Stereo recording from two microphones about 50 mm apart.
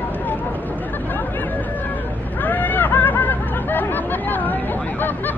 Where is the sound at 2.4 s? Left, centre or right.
Left.